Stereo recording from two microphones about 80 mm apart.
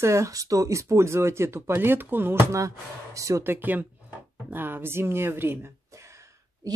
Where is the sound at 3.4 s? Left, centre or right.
Right.